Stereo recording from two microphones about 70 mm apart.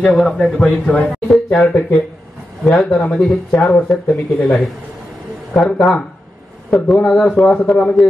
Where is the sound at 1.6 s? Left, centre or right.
Centre.